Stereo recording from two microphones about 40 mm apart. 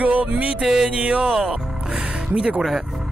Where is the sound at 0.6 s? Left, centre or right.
Centre.